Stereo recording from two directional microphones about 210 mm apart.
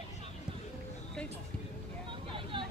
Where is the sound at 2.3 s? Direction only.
25° right (ahead or behind).